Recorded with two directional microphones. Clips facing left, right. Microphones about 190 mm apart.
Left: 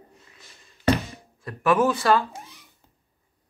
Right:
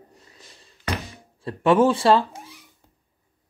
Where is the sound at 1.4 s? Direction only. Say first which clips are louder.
Right 4 dB; 30° right (ahead or behind).